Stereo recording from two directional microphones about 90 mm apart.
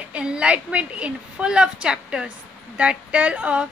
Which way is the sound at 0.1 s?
10° right (ahead or behind).